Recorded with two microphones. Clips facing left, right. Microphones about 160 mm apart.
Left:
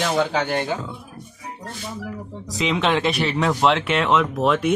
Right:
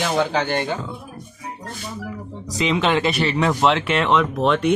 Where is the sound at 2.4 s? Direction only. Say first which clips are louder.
Right 1 dB; centre (ahead or behind).